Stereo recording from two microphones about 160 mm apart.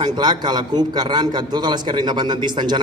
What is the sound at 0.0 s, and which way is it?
A man's voice, 25° right (ahead or behind).